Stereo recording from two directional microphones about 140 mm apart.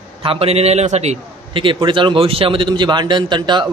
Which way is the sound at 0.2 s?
40° right (ahead or behind).